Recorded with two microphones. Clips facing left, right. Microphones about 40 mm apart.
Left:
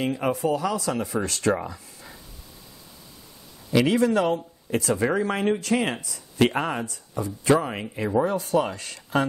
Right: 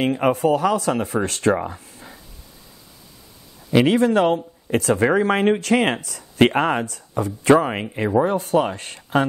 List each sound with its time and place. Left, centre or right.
0.0 s speech: right
3.7 s speech: right
6.3 s speech: right
7.5 s speech: right